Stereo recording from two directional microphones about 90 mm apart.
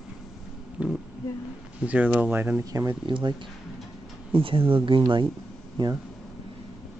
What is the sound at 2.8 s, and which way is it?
Speech, 55° right (ahead or behind).